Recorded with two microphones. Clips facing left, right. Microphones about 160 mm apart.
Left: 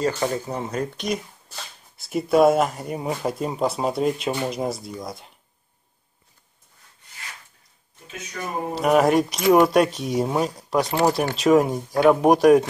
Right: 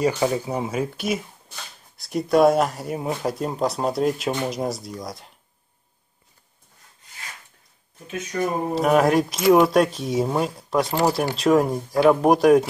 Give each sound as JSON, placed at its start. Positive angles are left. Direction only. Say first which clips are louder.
{"t": 0.1, "sound": "speech", "louder": "right 3 dB", "side_deg": -10}
{"t": 8.3, "sound": "speech", "louder": "right 8 dB", "side_deg": -40}
{"t": 8.7, "sound": "speech", "louder": "left 1 dB", "side_deg": 0}